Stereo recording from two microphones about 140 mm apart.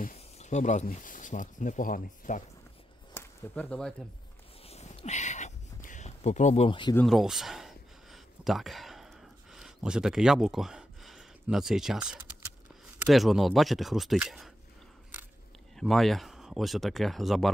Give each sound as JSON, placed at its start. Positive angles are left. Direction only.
{"t": 0.1, "sound": "speech", "side_deg": 55}
{"t": 3.2, "sound": "speech", "side_deg": 10}
{"t": 4.6, "sound": "a sound", "side_deg": 50}
{"t": 7.1, "sound": "a sound", "side_deg": 0}
{"t": 13.0, "sound": "speech", "side_deg": 0}
{"t": 15.7, "sound": "speech", "side_deg": 0}